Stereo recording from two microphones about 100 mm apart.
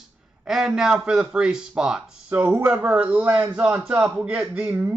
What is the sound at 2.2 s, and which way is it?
Speech, 20° right (ahead or behind).